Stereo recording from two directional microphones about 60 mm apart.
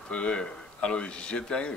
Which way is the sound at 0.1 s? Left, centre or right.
Centre.